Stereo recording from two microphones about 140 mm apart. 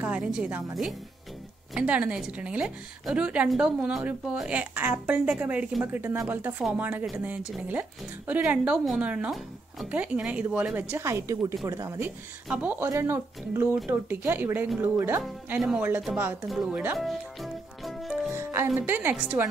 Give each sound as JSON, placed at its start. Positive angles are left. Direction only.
{"t": 0.0, "sound": "a woman's voice", "side_deg": -10}
{"t": 1.7, "sound": "a woman's voice", "side_deg": -10}
{"t": 8.3, "sound": "a woman's voice", "side_deg": -10}
{"t": 12.4, "sound": "a woman's voice", "side_deg": -10}
{"t": 16.1, "sound": "speech", "side_deg": -5}
{"t": 16.4, "sound": "music", "side_deg": 0}
{"t": 18.3, "sound": "music", "side_deg": -20}
{"t": 18.8, "sound": "a woman's voice", "side_deg": -15}